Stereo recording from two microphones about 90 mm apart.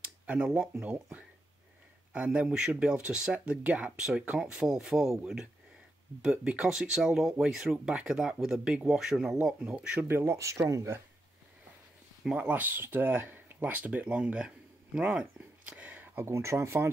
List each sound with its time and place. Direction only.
0.0 s a sound: 10° right (ahead or behind)
2.1 s speech: 10° right (ahead or behind)
10.0 s speech: 25° right (ahead or behind)
12.4 s speech: 20° right (ahead or behind)
15.7 s a sound: 20° right (ahead or behind)
16.3 s speech: 30° right (ahead or behind)